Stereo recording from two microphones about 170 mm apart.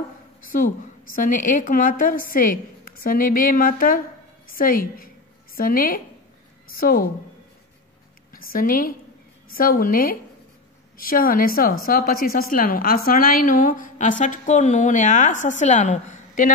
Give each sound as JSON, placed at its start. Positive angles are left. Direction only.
{"t": 0.5, "sound": "a woman's voice", "side_deg": 55}
{"t": 8.3, "sound": "a woman's voice", "side_deg": 55}